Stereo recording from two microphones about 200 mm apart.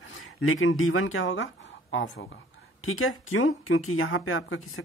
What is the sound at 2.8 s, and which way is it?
Speech, 90° left.